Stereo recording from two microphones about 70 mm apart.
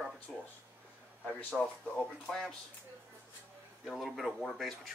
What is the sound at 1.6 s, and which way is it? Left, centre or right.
Speech, centre.